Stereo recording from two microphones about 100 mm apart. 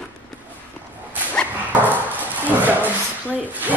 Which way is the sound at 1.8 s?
15° right (ahead or behind).